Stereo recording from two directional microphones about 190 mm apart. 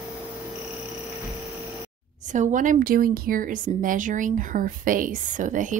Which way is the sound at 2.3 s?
40° right (ahead or behind).